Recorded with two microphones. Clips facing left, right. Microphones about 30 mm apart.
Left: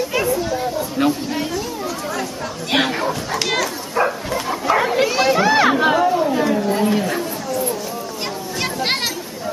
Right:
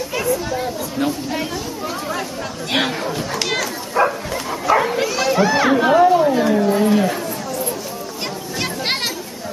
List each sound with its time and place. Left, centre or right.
1.0 s speech: left
2.7 s speech: centre
4.5 s bow-wow: centre
4.9 s speech: centre
5.9 s a sound: centre
8.5 s children playing: centre